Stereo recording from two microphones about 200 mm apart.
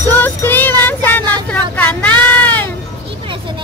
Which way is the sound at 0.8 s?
10° left (ahead or behind).